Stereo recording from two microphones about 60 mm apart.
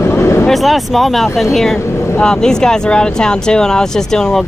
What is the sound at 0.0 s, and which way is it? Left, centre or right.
Vehicle, left.